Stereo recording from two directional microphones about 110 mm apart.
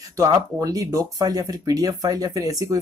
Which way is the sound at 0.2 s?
35° right (ahead or behind).